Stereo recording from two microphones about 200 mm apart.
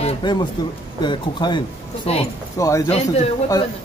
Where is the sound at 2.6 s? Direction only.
15° left (ahead or behind).